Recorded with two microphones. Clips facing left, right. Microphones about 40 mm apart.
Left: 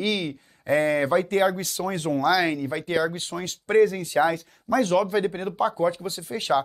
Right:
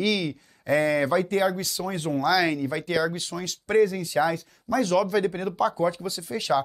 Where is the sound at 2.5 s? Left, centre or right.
Centre.